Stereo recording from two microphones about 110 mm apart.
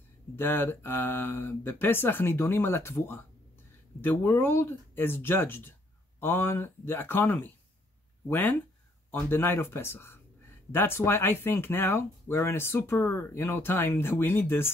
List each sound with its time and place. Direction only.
0.4 s speech: 20° left (ahead or behind)